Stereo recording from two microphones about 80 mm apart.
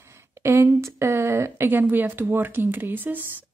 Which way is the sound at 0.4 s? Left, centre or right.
Right.